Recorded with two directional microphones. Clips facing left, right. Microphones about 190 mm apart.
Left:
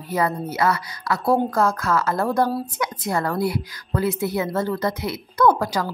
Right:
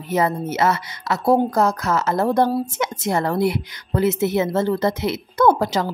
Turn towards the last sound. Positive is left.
turn(degrees=-25)  # may be behind; listen again after turning